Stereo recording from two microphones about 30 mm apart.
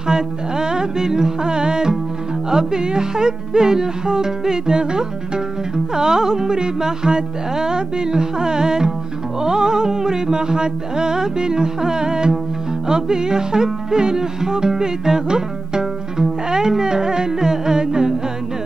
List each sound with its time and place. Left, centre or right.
0.0 s music: right